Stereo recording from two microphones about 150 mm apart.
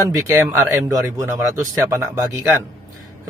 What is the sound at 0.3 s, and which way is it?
Speech, 20° right (ahead or behind).